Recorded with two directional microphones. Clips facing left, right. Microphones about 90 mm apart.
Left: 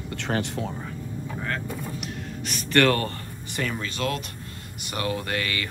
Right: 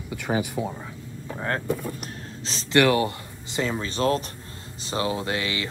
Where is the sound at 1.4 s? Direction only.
30° right (ahead or behind).